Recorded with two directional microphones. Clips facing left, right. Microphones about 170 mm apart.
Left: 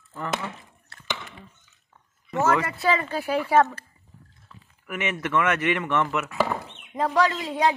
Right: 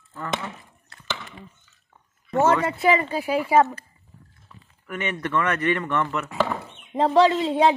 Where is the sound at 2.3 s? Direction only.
25° right (ahead or behind).